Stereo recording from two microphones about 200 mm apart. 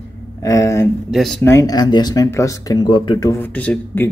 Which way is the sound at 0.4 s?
15° left (ahead or behind).